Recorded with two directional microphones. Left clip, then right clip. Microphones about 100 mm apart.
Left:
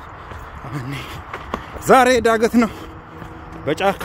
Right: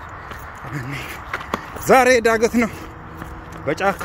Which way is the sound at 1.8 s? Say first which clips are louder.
Left 1 dB; 40° left (ahead or behind).